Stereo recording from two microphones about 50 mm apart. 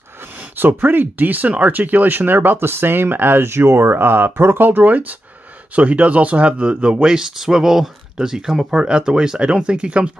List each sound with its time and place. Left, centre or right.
0.6 s speech: right